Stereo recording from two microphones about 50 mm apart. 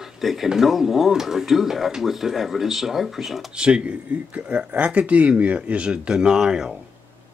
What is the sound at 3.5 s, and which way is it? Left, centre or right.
Speech, centre.